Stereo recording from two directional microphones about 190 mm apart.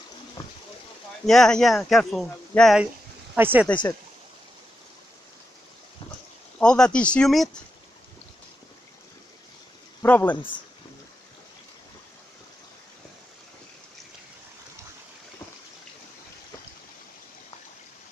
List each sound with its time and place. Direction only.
1.2 s speech: centre (ahead or behind)
3.3 s speech: 10° right (ahead or behind)
6.6 s speech: 5° left (ahead or behind)
10.0 s speech: 10° left (ahead or behind)
10.3 s speech: 25° left (ahead or behind)